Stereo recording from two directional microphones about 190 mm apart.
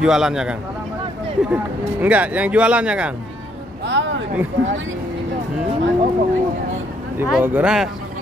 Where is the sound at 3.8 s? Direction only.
70° right (ahead or behind).